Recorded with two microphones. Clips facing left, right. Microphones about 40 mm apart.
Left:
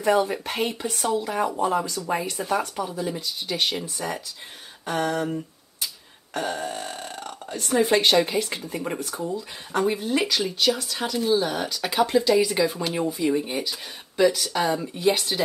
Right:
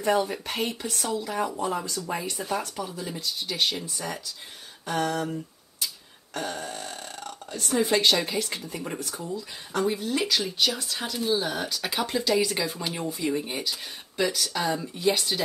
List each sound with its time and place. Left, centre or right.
0.2 s speech: centre
10.2 s speech: centre
14.8 s speech: centre